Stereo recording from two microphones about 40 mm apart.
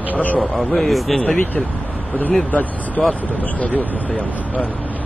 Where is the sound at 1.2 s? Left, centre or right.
Left.